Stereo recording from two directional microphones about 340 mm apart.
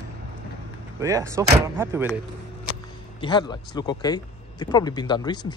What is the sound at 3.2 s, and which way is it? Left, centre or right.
Speech, centre.